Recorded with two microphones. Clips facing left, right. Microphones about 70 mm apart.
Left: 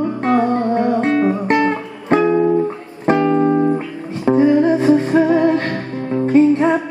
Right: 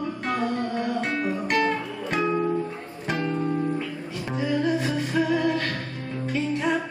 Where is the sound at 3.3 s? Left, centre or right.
Left.